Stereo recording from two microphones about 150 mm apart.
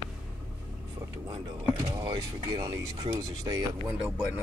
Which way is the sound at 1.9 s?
25° right (ahead or behind).